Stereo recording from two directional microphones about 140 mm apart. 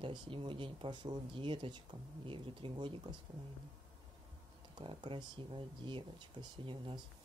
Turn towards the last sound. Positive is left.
turn(degrees=-35)  # may be behind; listen again after turning